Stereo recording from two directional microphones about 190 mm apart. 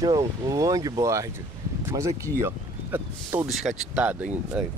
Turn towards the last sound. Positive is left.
turn(degrees=-5)  # may be behind; listen again after turning